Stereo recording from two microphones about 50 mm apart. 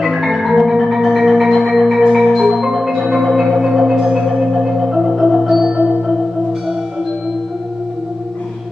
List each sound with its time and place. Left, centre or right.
0.0 s marimba: centre
3.5 s marimba: centre
5.8 s music: right